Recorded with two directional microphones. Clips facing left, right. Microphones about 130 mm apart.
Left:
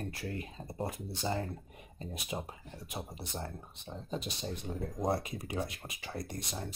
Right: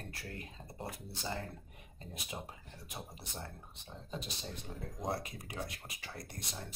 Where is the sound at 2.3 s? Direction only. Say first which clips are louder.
Left 6 dB; 20° left (ahead or behind).